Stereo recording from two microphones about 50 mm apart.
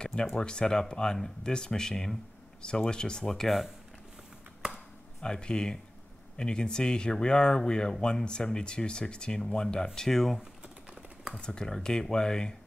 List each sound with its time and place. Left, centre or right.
0.0 s a sound: centre
0.4 s speech: centre
5.2 s speech: centre